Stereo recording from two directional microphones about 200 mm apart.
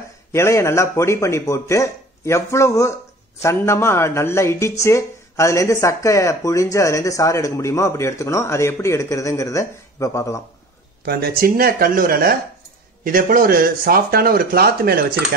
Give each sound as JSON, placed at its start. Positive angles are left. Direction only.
{"t": 0.3, "sound": "speech", "side_deg": 15}
{"t": 11.1, "sound": "speech", "side_deg": -50}